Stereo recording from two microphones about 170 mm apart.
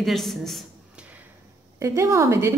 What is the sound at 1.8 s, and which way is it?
Speech, 15° right (ahead or behind).